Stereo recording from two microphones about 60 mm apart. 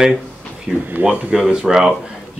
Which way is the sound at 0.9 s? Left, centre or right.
Right.